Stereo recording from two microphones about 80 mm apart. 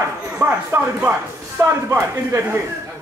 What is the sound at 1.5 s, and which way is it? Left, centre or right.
A man's voice, right.